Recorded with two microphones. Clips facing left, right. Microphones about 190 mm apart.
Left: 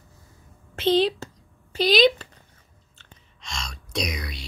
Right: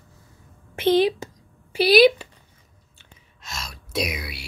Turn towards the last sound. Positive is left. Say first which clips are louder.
# right 2 dB
turn(degrees=-5)  # may be behind; listen again after turning